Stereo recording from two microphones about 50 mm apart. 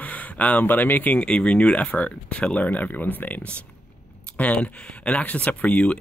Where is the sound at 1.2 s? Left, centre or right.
Left.